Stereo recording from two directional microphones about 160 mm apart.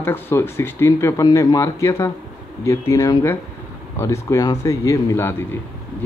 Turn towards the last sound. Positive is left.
turn(degrees=15)  # may be behind; listen again after turning